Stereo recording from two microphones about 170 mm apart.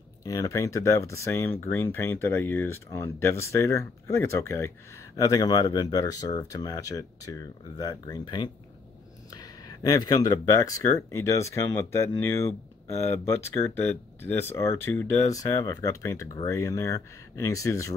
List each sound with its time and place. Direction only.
0.2 s speech: 20° left (ahead or behind)